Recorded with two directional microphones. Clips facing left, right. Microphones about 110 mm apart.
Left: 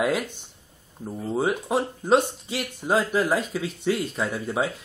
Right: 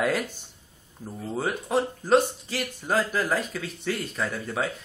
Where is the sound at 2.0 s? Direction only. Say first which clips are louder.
Left 1 dB; 25° left (ahead or behind).